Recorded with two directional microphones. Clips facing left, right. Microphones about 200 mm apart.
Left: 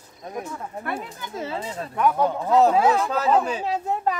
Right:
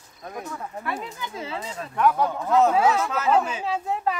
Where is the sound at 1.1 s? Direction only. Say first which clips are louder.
Left 2 dB; 45° left (ahead or behind).